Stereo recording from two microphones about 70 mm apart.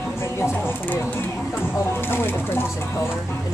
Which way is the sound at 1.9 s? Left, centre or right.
Left.